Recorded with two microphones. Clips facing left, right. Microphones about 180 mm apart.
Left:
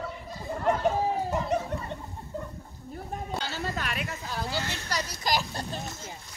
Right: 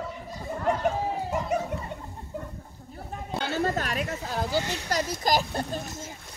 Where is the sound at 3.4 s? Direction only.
50° right (ahead or behind).